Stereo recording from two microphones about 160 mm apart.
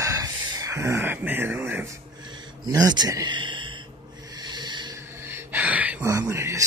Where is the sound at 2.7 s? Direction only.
20° right (ahead or behind).